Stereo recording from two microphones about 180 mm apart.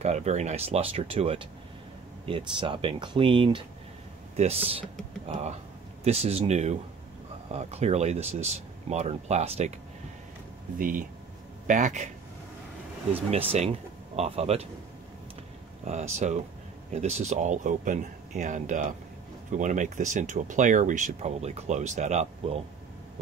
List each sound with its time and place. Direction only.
0.0 s speech: 40° right (ahead or behind)
10.8 s speech: 50° right (ahead or behind)
13.1 s speech: 35° right (ahead or behind)
15.8 s speech: 40° right (ahead or behind)